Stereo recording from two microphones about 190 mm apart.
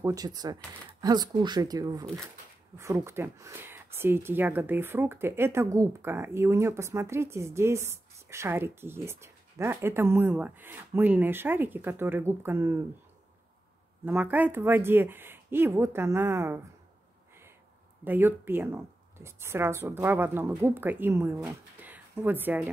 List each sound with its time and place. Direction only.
0.0 s speech: 20° right (ahead or behind)
14.0 s speech: 10° right (ahead or behind)
18.0 s speech: 10° right (ahead or behind)